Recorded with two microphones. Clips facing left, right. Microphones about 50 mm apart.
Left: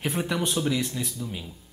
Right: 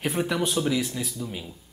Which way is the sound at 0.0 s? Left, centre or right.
Centre.